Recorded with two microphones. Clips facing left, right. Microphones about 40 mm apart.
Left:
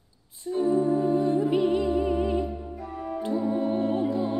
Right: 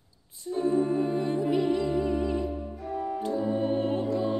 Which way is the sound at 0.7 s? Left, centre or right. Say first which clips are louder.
Left 1 dB; right.